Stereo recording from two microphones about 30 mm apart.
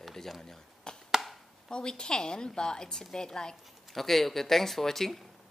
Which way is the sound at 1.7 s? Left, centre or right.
Left.